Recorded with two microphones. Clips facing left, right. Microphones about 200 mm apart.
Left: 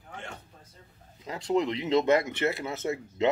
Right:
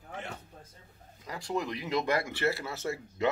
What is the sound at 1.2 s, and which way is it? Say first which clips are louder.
Speech: left 7 dB; 20° left (ahead or behind).